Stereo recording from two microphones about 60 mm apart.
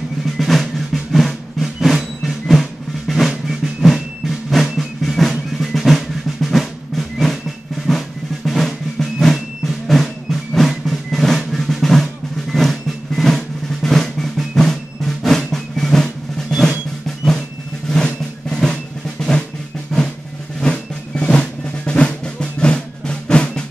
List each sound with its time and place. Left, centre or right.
0.4 s drum: centre
8.5 s drum: centre
9.2 s music: centre
13.8 s drum: centre
17.8 s drum: centre
20.6 s drum: centre